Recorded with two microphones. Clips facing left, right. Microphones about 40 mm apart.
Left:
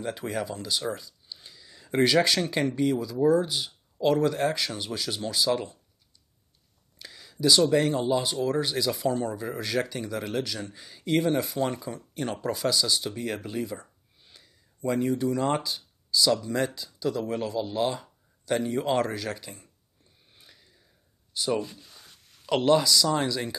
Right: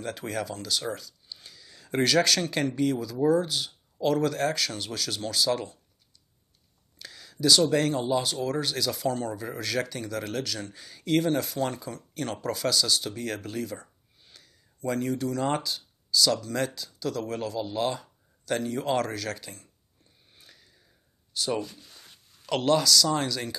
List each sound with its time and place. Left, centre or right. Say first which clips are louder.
0.3 s speech: right 1 dB; centre
7.0 s speech: even; centre
20.3 s a sound: right 1 dB; centre
21.4 s speech: left 1 dB; centre
21.7 s a sound: even; centre
22.5 s speech: left 1 dB; centre